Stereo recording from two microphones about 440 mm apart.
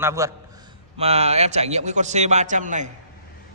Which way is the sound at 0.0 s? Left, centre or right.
Centre.